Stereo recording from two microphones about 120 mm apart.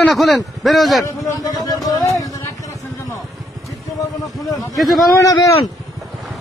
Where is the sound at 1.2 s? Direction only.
30° left (ahead or behind).